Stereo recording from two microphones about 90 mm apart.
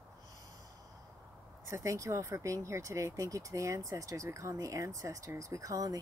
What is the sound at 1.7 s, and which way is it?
Speech, 35° right (ahead or behind).